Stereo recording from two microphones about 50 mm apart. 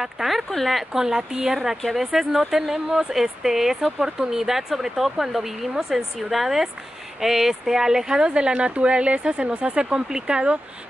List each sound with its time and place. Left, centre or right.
0.0 s speech: centre
2.0 s speech: centre; by 10.6 s right